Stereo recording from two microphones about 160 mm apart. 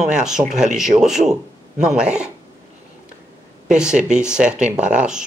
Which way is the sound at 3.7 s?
5° right (ahead or behind).